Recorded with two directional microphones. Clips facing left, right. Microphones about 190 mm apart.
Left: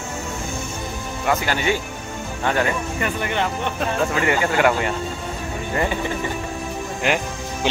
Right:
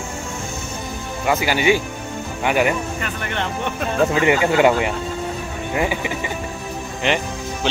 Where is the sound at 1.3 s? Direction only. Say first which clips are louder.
Right 4 dB; 5° right (ahead or behind).